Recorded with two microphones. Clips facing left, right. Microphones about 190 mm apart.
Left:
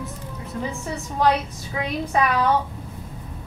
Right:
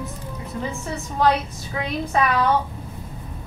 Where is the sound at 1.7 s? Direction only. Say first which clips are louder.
Even; 10° left (ahead or behind).